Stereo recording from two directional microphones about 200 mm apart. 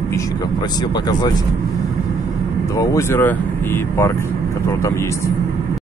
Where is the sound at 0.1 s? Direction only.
15° left (ahead or behind).